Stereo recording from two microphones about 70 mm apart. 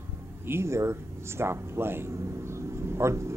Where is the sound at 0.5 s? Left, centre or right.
Right.